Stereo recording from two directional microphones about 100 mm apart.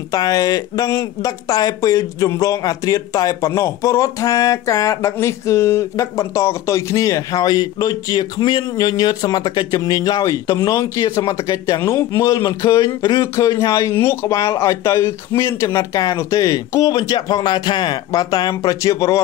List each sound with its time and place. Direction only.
0.1 s speech: 40° left (ahead or behind)